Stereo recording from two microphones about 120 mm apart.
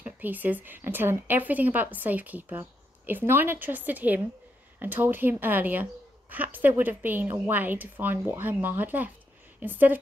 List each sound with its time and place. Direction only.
0.0 s a woman's voice: 15° right (ahead or behind)